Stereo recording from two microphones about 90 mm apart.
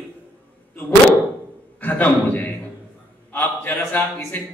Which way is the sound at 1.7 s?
20° left (ahead or behind).